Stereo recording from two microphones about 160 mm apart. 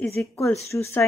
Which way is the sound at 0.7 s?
15° left (ahead or behind).